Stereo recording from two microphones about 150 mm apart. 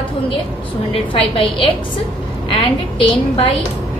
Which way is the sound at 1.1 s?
35° left (ahead or behind).